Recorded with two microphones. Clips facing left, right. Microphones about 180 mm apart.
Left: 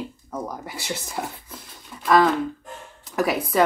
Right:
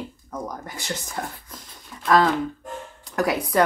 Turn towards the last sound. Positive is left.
turn(degrees=0)  # may be behind; listen again after turning